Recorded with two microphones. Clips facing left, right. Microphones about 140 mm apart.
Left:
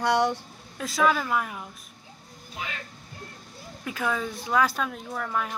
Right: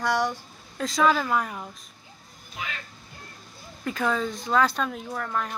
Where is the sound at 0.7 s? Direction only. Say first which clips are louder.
Right 2 dB; 5° left (ahead or behind).